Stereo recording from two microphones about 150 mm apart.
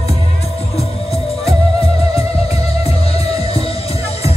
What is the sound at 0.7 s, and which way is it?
Music, 40° left (ahead or behind).